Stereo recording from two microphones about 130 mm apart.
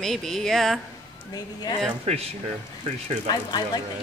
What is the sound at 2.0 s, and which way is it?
Speech, 50° right (ahead or behind).